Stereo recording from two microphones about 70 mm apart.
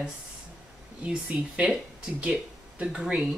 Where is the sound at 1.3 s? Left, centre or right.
Right.